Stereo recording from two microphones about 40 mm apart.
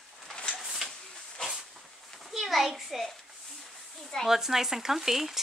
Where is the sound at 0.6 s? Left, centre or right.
Centre.